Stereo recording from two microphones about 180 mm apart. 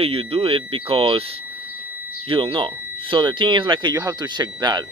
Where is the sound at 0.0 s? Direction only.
30° right (ahead or behind).